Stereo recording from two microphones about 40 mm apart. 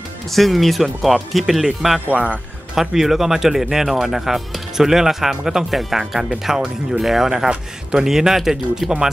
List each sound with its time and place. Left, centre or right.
0.3 s speech: centre
2.0 s speech: right
2.7 s speech: centre